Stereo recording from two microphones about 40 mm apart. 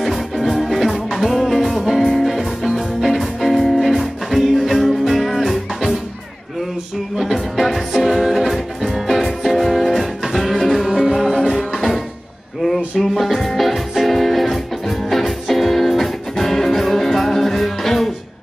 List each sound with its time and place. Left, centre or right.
0.0 s music: centre
7.2 s music: centre
13.0 s music: centre